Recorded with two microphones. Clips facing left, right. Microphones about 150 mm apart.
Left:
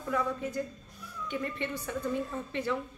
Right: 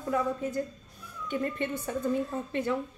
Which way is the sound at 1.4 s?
45° right (ahead or behind).